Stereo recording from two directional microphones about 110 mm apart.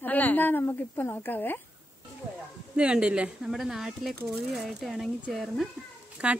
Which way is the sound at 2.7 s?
10° right (ahead or behind).